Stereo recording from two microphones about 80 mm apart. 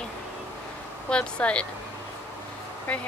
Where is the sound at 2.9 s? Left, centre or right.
Centre.